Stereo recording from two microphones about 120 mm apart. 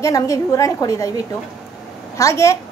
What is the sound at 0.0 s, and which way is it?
A woman's voice, 25° left (ahead or behind).